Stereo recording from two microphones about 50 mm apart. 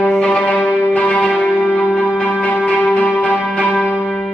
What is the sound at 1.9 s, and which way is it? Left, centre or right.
Music, left.